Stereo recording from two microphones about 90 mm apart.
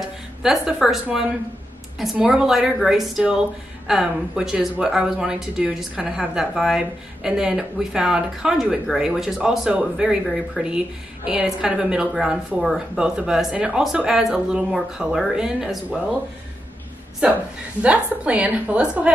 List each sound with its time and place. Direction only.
0.4 s speech: 5° right (ahead or behind)
2.1 s speech: 10° right (ahead or behind)
17.8 s speech: 15° right (ahead or behind)